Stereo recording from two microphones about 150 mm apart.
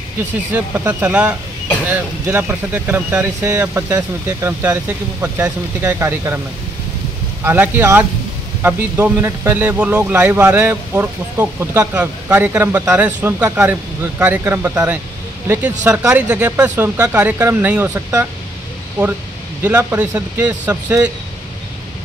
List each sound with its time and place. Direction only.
0.5 s a man's voice: 10° right (ahead or behind)
7.4 s a man's voice: 15° right (ahead or behind)
19.6 s a man's voice: 15° right (ahead or behind)